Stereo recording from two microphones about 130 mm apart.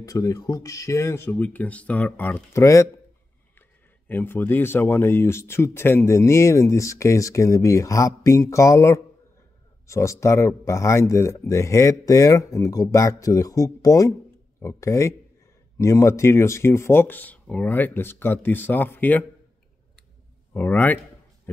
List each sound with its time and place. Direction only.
0.0 s speech: 25° left (ahead or behind)
4.1 s speech: 15° left (ahead or behind)
20.5 s speech: 15° left (ahead or behind)